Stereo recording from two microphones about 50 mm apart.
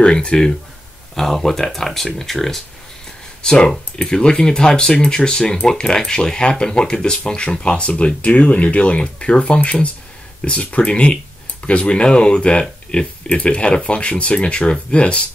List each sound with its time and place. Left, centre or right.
0.0 s speech: centre